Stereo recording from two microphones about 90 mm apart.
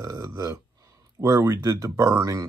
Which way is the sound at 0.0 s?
35° right (ahead or behind).